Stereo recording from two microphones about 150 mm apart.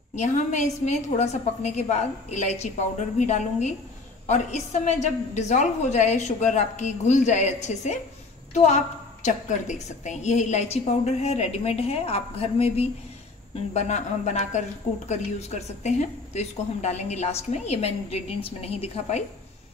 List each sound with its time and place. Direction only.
0.1 s a woman's voice: 50° left (ahead or behind)
13.7 s a woman's voice: 50° left (ahead or behind)